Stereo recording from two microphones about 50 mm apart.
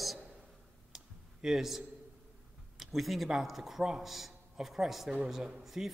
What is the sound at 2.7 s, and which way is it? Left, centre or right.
A man's voice, centre.